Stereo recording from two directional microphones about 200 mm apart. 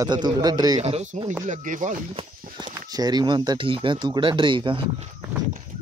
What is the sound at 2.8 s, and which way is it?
Speech, 20° right (ahead or behind).